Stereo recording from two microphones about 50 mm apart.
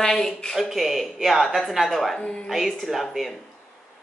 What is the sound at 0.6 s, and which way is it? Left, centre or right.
Speech, centre.